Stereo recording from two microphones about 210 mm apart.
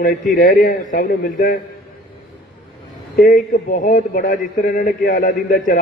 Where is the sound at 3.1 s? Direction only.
40° left (ahead or behind).